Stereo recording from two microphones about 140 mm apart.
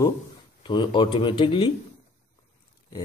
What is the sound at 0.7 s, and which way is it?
Speech, 35° left (ahead or behind).